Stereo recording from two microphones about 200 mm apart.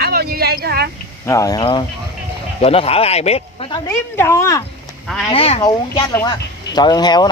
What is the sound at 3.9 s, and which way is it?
Speech, 15° left (ahead or behind).